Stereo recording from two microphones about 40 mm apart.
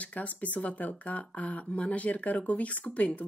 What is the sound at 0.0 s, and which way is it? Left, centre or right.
Speech, left.